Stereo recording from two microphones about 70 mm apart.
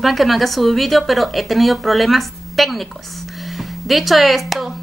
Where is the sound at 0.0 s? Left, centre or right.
Centre.